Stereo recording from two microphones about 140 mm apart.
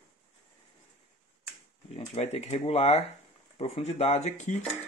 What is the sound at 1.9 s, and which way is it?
Speech, 50° left (ahead or behind).